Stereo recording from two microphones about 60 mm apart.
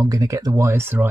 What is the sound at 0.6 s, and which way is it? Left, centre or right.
Speech, right.